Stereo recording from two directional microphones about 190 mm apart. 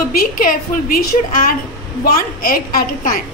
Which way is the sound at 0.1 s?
50° left (ahead or behind).